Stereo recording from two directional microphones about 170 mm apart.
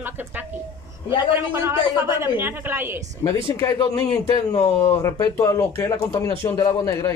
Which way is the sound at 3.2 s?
20° left (ahead or behind).